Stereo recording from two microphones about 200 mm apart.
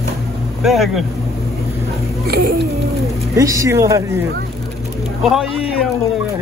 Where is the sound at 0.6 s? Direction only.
Centre (ahead or behind).